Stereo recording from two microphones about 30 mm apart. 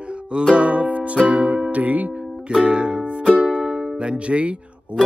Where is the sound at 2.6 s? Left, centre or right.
Right.